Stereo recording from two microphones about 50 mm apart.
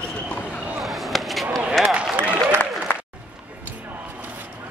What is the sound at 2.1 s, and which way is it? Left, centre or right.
Applause, right.